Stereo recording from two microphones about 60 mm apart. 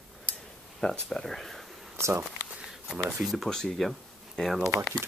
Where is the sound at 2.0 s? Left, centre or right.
Right.